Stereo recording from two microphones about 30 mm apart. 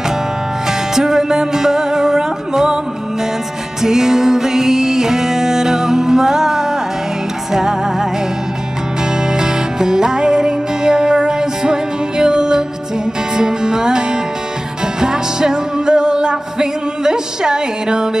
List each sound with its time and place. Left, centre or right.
0.7 s music: centre
3.8 s music: centre